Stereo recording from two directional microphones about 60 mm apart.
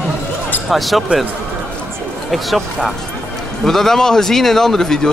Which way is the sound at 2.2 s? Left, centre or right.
Centre.